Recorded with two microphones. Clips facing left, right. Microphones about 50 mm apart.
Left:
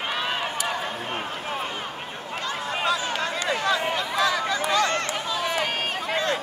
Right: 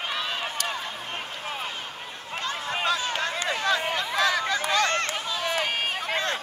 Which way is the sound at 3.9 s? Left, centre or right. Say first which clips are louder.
Left 1 dB; right.